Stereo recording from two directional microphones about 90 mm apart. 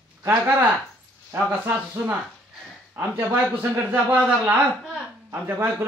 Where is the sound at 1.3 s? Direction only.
25° right (ahead or behind).